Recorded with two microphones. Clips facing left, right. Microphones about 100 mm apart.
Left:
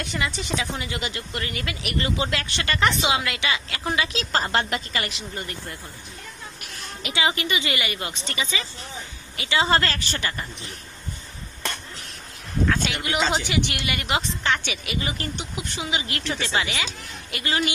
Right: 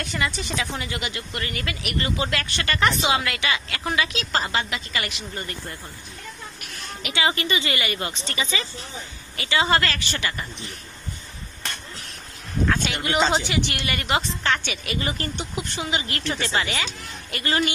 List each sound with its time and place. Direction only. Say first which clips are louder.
0.0 s speech: right 1 dB; 20° left (ahead or behind)
4.5 s a woman's voice: left 2 dB; 50° left (ahead or behind)
4.9 s speech: even; 30° left (ahead or behind)
7.0 s speech: even; 25° left (ahead or behind)
7.2 s a woman's voice: right 1 dB; 10° left (ahead or behind)
9.4 s speech: even; 20° left (ahead or behind)
12.8 s a woman's voice: right 2 dB; 5° left (ahead or behind)